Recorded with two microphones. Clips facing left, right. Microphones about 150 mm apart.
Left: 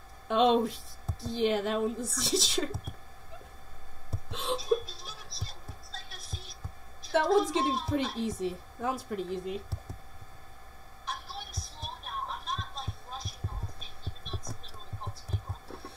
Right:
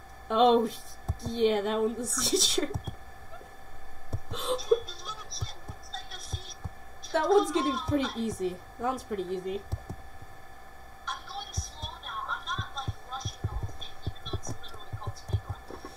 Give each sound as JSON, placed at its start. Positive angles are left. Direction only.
{"t": 0.3, "sound": "a woman's voice", "side_deg": 0}
{"t": 4.3, "sound": "a sound", "side_deg": 0}
{"t": 5.3, "sound": "whispering", "side_deg": 0}
{"t": 7.1, "sound": "a woman's voice", "side_deg": 0}
{"t": 11.3, "sound": "music", "side_deg": 0}
{"t": 12.3, "sound": "music", "side_deg": 35}
{"t": 14.0, "sound": "heart murmur", "side_deg": 0}